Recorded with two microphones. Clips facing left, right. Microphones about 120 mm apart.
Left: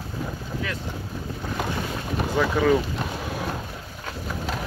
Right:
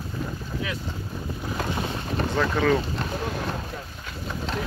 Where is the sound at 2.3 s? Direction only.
5° left (ahead or behind).